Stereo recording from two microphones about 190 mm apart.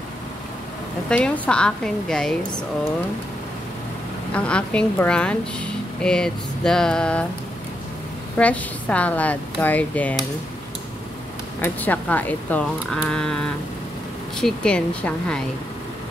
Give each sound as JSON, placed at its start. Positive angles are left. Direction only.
{"t": 1.0, "sound": "a woman's voice", "side_deg": 5}
{"t": 4.3, "sound": "a woman's voice", "side_deg": 5}
{"t": 8.4, "sound": "speech", "side_deg": 5}
{"t": 11.6, "sound": "a woman's voice", "side_deg": 10}